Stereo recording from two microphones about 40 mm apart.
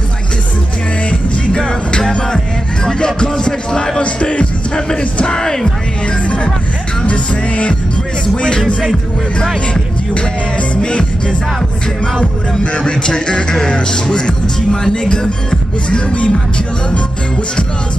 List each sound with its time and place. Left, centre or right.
1.5 s music: left
4.0 s music: left
4.7 s music: centre
6.2 s music: left
10.7 s music: left
12.7 s music: left